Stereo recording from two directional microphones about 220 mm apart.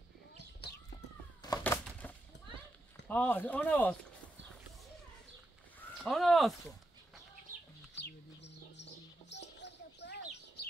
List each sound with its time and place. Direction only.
1.4 s cat: 15° left (ahead or behind)
3.1 s speech: 10° left (ahead or behind)
6.0 s speech: centre (ahead or behind)
7.9 s bird: 50° left (ahead or behind)